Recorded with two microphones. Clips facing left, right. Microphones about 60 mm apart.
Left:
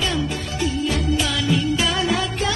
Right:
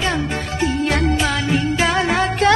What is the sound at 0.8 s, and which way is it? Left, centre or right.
Music, right.